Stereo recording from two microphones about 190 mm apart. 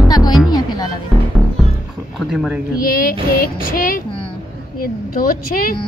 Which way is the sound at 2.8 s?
50° left (ahead or behind).